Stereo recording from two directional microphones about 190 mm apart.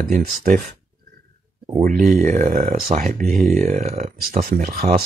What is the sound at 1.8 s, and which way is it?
Speech, 40° right (ahead or behind).